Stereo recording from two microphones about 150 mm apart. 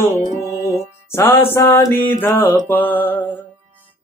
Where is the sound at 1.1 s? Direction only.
15° left (ahead or behind).